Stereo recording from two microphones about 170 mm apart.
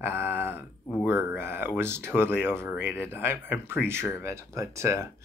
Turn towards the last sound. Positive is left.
turn(degrees=-15)  # may be behind; listen again after turning